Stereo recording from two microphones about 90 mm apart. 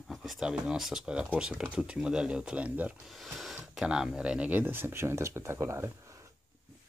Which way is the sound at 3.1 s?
Centre (ahead or behind).